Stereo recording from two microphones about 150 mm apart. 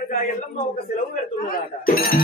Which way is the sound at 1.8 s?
75° left (ahead or behind).